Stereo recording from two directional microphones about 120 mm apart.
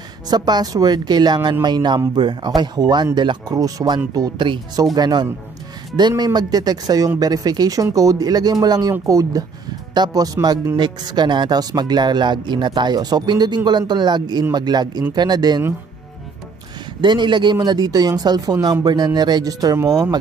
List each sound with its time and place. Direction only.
0.3 s speech: 35° right (ahead or behind)
17.0 s speech: 40° right (ahead or behind)